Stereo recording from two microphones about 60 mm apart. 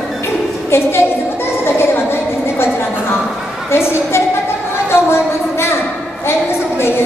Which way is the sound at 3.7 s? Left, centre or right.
Left.